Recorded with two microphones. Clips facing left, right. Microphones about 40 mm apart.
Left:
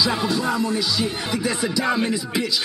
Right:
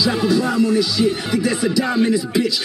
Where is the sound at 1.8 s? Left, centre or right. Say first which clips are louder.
Right 4 dB; centre.